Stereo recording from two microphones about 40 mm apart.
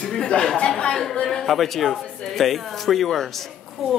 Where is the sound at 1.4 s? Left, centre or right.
Centre.